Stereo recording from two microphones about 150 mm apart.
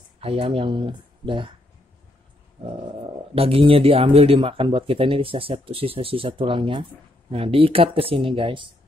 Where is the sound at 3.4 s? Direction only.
40° right (ahead or behind).